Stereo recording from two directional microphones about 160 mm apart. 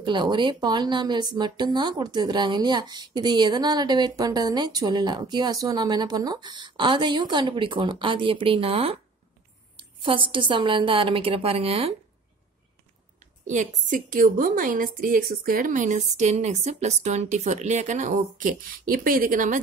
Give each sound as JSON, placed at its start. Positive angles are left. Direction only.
{"t": 0.0, "sound": "a woman's voice", "side_deg": -30}
{"t": 13.2, "sound": "a woman's voice", "side_deg": -50}